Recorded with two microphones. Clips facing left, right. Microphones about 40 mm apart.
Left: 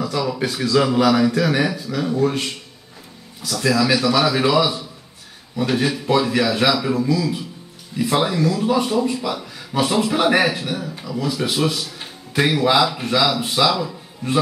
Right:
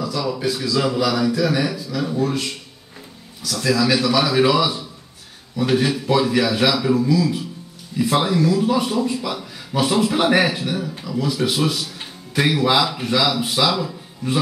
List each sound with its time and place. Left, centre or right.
0.0 s a sound: left
0.4 s a man's voice: left
2.0 s a man's voice: centre
3.4 s a man's voice: centre
3.8 s a man's voice: centre
5.7 s speech: centre